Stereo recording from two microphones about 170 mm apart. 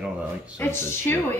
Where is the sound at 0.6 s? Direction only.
15° left (ahead or behind).